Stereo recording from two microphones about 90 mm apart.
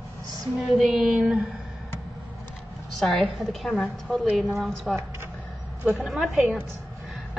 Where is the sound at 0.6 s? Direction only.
Centre (ahead or behind).